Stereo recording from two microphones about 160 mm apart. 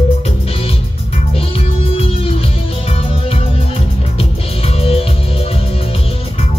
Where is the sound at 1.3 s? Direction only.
35° left (ahead or behind).